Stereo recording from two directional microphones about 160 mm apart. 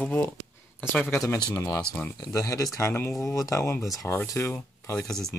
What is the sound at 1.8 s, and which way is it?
Speech, 5° left (ahead or behind).